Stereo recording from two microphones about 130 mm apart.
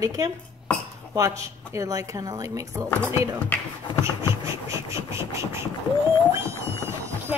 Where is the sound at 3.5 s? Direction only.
10° left (ahead or behind).